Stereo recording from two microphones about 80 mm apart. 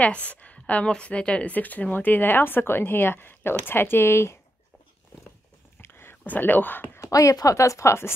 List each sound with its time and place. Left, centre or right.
0.3 s speech: centre; by 4.4 s left
5.8 s whispering: left
7.0 s a woman's voice: left